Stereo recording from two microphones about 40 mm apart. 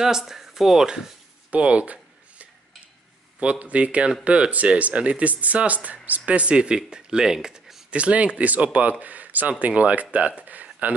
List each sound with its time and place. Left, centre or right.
0.0 s speech: centre
1.5 s a sound: right
3.3 s speech: right
6.5 s speech: right
7.9 s speech: right
10.5 s a sound: right